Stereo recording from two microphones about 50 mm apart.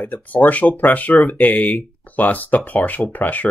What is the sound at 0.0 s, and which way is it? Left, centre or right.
Speech, left.